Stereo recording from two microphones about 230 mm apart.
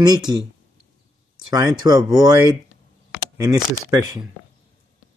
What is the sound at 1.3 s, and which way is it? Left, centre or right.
Speech, centre.